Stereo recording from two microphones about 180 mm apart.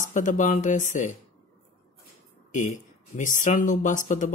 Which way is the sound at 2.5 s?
45° left (ahead or behind).